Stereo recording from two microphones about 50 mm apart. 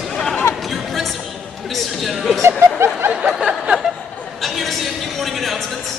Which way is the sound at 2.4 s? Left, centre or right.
Right.